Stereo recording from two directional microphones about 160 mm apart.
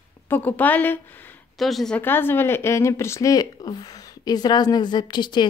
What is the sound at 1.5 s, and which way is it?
Speech, centre (ahead or behind).